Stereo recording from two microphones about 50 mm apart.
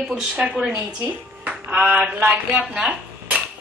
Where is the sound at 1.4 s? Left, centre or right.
Right.